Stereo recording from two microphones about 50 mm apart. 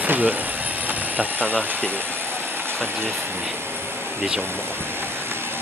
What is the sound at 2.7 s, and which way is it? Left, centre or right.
Speech, right.